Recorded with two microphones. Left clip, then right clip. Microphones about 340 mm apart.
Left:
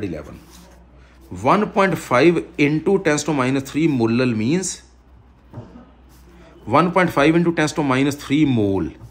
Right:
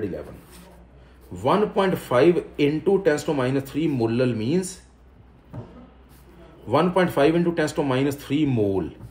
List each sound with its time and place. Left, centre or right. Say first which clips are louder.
1.3 s speech: left 4 dB; left
6.7 s speech: left 4 dB; left